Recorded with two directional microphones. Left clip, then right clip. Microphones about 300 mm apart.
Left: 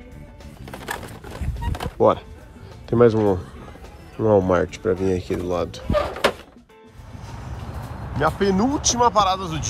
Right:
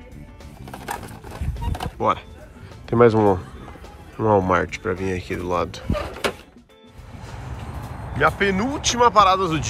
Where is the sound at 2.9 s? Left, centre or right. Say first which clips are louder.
Right 1 dB; centre.